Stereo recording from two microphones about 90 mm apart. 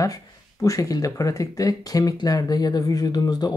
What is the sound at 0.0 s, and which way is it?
Speech, 40° left (ahead or behind).